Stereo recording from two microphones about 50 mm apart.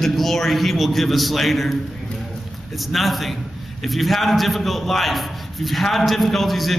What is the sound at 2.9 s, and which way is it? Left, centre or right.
A man's voice, centre.